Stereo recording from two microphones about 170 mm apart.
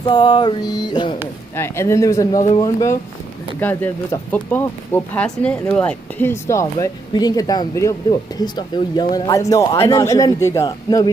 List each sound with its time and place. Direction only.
0.0 s mantra: 25° left (ahead or behind)
1.6 s speech: 15° left (ahead or behind)
9.8 s mantra: 20° left (ahead or behind)